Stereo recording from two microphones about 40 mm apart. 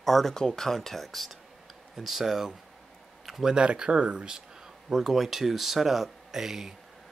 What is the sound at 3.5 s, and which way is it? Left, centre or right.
Speech, right.